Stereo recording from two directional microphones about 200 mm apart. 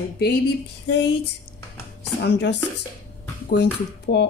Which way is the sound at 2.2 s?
60° left (ahead or behind).